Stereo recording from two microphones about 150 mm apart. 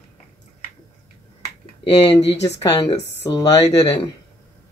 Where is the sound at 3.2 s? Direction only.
25° left (ahead or behind).